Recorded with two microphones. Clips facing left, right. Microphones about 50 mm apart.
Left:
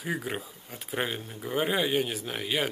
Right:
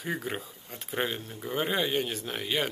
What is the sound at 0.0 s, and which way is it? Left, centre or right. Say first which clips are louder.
Speech: left 1 dB; centre.